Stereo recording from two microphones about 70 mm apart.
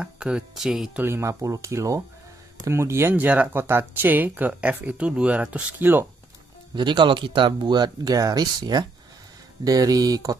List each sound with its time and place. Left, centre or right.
0.0 s speech: centre
1.0 s speech: right
3.1 s speech: right
6.7 s speech: right